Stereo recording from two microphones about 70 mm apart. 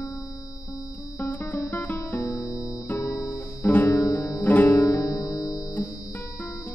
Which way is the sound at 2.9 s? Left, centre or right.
Left.